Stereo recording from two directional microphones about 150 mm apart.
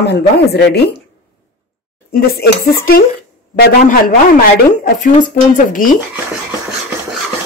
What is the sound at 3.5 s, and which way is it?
Speech, 70° left (ahead or behind).